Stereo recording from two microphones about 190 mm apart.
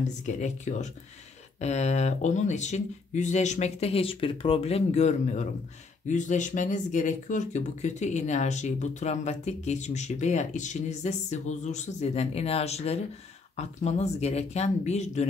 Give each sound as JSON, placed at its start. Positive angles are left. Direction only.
{"t": 0.0, "sound": "speech", "side_deg": 40}